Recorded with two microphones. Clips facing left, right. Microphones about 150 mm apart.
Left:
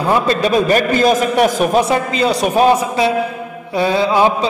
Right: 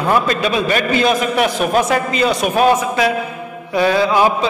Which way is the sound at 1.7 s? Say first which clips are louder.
Left 1 dB; 25° left (ahead or behind).